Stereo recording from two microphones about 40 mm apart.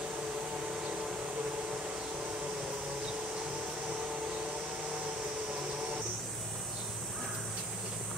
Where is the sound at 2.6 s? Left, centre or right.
Right.